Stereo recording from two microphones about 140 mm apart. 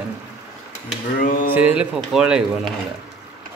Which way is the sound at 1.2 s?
75° left (ahead or behind).